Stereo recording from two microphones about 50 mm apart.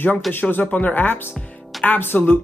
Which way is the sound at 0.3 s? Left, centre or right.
Left.